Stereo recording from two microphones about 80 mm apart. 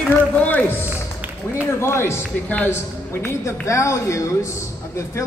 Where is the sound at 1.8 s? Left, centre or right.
Left.